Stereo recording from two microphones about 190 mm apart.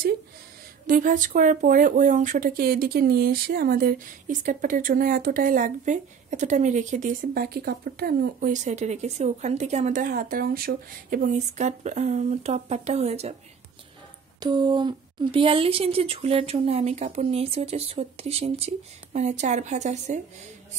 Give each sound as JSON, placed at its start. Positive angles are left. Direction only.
{"t": 0.8, "sound": "speech", "side_deg": -45}
{"t": 14.4, "sound": "speech", "side_deg": -25}